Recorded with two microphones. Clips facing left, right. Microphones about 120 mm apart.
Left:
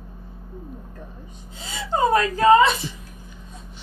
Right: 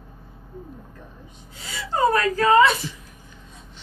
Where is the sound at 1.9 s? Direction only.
20° left (ahead or behind).